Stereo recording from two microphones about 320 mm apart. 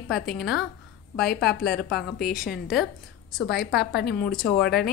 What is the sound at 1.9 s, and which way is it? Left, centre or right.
Speech, centre.